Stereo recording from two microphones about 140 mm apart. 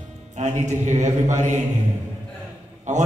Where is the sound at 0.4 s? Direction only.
60° right (ahead or behind).